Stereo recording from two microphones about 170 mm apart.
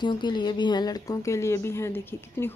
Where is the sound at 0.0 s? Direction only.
25° left (ahead or behind).